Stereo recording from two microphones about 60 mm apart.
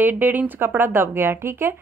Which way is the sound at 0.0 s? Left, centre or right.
Right.